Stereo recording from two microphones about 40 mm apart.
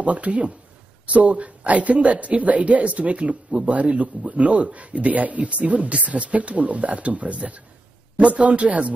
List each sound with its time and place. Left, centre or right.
0.0 s speech: right